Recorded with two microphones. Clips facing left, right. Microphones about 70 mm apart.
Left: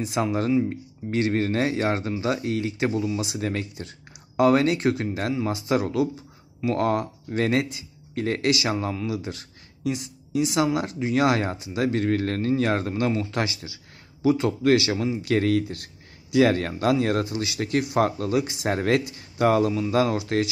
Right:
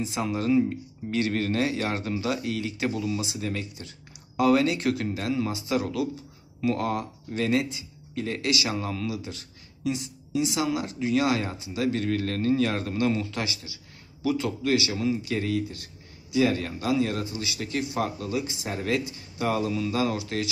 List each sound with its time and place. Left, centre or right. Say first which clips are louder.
0.0 s speech: left 3 dB; left
3.2 s speech: left 3 dB; left